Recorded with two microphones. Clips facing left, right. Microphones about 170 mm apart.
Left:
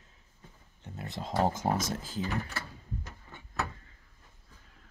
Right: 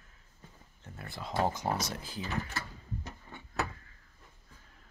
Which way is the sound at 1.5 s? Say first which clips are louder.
Left 3 dB; 50° left (ahead or behind).